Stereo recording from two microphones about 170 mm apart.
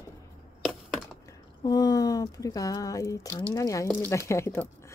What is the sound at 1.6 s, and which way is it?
Speech, 25° left (ahead or behind).